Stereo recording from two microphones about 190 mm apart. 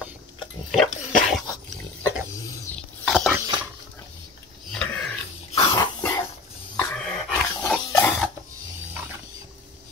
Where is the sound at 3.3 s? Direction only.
20° right (ahead or behind).